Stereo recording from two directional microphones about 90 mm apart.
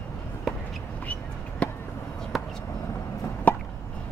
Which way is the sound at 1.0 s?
15° left (ahead or behind).